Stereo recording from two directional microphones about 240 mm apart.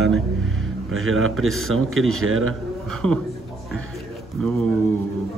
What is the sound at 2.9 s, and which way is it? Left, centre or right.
Speech, centre.